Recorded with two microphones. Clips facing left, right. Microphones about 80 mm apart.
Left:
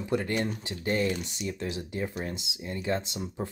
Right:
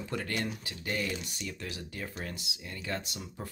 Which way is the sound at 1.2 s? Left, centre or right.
Left.